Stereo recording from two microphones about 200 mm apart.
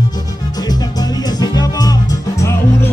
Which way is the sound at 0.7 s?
20° left (ahead or behind).